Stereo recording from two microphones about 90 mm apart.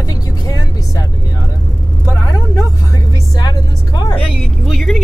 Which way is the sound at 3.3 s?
45° left (ahead or behind).